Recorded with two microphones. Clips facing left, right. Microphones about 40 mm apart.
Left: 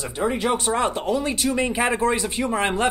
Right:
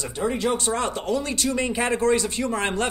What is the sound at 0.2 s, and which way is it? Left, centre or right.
Speech, left.